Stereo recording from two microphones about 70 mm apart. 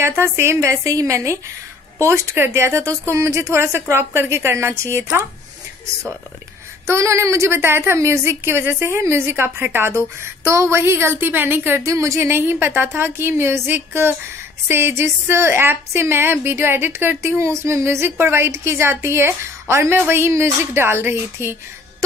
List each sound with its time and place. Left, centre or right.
0.0 s a woman's voice: right
6.9 s a woman's voice: right
11.8 s a woman's voice: right